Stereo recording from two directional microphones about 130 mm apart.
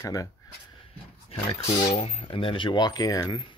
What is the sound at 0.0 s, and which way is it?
Speech, 25° left (ahead or behind).